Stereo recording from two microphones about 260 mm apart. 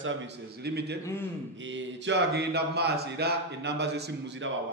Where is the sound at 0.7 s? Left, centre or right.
Right.